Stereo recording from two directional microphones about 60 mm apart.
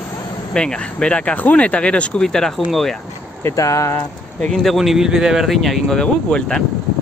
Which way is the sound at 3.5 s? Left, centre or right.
Left.